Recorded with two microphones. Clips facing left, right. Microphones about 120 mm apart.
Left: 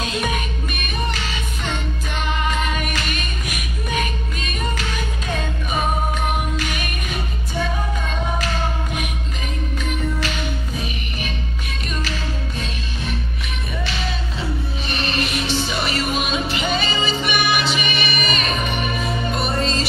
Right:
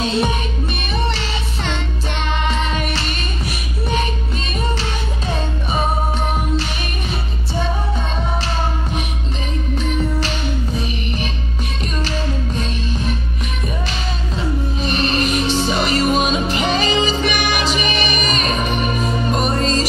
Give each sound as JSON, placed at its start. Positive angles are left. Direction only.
{"t": 0.0, "sound": "music", "side_deg": -30}
{"t": 2.4, "sound": "music", "side_deg": -30}
{"t": 14.9, "sound": "music", "side_deg": -35}